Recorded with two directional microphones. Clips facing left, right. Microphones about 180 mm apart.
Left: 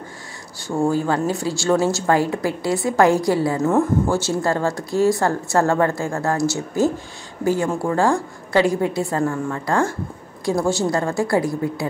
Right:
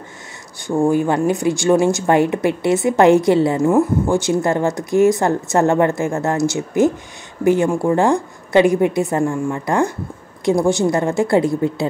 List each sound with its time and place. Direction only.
0.7 s speech: 15° right (ahead or behind)